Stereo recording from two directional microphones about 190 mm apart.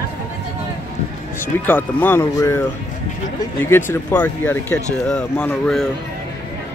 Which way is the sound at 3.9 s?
10° left (ahead or behind).